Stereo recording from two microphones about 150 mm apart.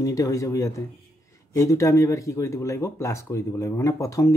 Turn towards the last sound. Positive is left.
turn(degrees=20)  # may be behind; listen again after turning